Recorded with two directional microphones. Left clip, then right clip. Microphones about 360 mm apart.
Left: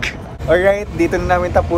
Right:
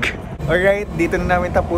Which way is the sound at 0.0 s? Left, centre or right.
Centre.